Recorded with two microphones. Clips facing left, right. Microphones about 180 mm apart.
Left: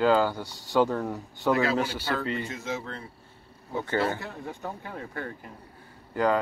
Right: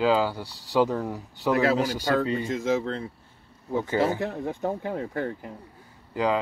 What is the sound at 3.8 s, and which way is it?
Speech, 10° right (ahead or behind).